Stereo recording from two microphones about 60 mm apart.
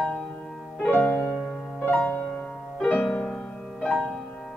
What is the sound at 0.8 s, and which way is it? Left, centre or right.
Music, left.